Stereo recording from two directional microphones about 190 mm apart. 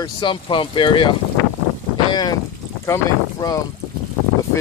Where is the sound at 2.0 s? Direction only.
20° left (ahead or behind).